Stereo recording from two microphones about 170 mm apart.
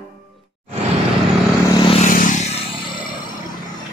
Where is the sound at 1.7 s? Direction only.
30° left (ahead or behind).